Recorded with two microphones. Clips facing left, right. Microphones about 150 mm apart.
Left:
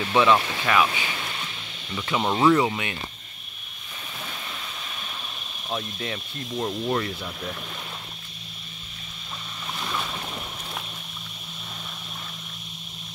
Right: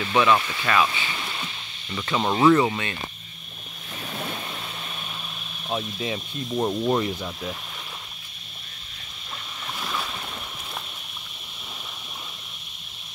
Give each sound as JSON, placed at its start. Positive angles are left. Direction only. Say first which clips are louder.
{"t": 0.2, "sound": "speech", "louder": "left 1 dB", "side_deg": 15}
{"t": 5.7, "sound": "speech", "louder": "right 3 dB", "side_deg": -15}
{"t": 9.8, "sound": "boat", "louder": "even", "side_deg": 0}